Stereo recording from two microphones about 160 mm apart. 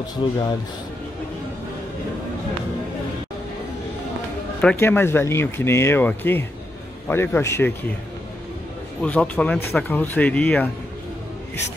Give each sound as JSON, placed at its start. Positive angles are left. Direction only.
{"t": 0.2, "sound": "speech", "side_deg": 30}
{"t": 4.6, "sound": "speech", "side_deg": 10}
{"t": 9.0, "sound": "speech", "side_deg": 10}